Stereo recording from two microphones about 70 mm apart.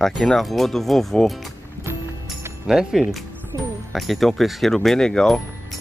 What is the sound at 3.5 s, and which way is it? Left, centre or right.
Music, right.